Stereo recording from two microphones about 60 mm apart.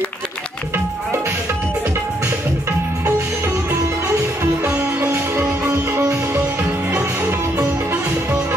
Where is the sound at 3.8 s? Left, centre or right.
Right.